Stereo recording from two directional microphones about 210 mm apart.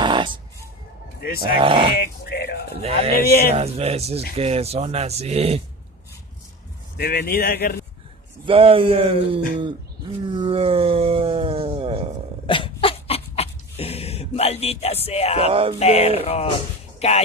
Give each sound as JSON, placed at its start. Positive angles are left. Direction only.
{"t": 0.0, "sound": "a sound", "side_deg": -20}
{"t": 1.2, "sound": "speech", "side_deg": 45}
{"t": 1.5, "sound": "speech", "side_deg": -25}
{"t": 2.0, "sound": "speech", "side_deg": 45}
{"t": 2.8, "sound": "speech", "side_deg": -30}
{"t": 3.3, "sound": "speech", "side_deg": 45}
{"t": 3.5, "sound": "speech", "side_deg": -30}
{"t": 7.0, "sound": "speech", "side_deg": 45}
{"t": 8.5, "sound": "speech", "side_deg": -25}
{"t": 10.3, "sound": "a sound", "side_deg": -25}
{"t": 12.4, "sound": "a sound", "side_deg": 25}
{"t": 15.8, "sound": "mantra", "side_deg": 30}